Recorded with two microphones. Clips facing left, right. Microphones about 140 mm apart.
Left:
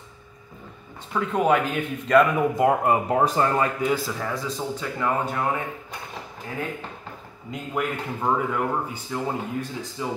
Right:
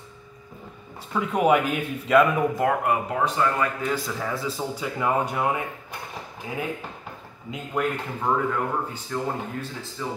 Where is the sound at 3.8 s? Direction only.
10° left (ahead or behind).